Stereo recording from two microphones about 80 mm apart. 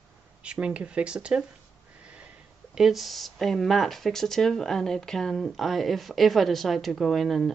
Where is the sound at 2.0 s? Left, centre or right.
Centre.